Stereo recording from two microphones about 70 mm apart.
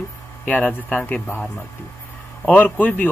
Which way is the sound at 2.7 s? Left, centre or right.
Left.